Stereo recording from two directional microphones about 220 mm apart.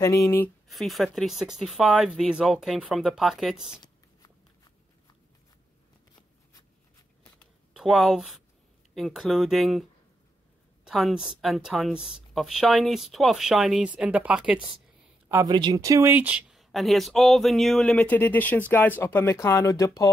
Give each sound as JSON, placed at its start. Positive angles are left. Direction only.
{"t": 0.0, "sound": "speech", "side_deg": 15}
{"t": 3.7, "sound": "shuffling cards", "side_deg": 20}
{"t": 7.7, "sound": "speech", "side_deg": 0}
{"t": 10.9, "sound": "speech", "side_deg": 0}
{"t": 15.2, "sound": "speech", "side_deg": -15}